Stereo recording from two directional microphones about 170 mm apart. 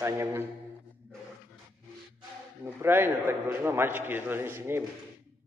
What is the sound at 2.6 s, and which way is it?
A man's voice, 10° right (ahead or behind).